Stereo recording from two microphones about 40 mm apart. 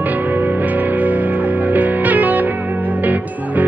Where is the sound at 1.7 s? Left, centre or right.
Right.